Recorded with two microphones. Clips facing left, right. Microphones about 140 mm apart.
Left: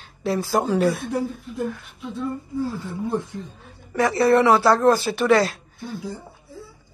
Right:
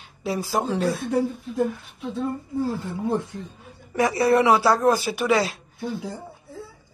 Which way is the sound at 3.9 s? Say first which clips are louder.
Left 2 dB; 20° right (ahead or behind).